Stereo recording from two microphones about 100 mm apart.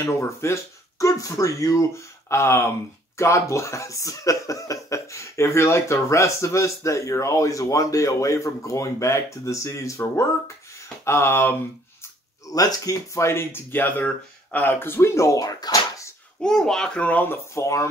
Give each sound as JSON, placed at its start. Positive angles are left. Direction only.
{"t": 0.0, "sound": "speech", "side_deg": 30}
{"t": 12.4, "sound": "speech", "side_deg": 35}
{"t": 16.4, "sound": "a child's voice", "side_deg": 5}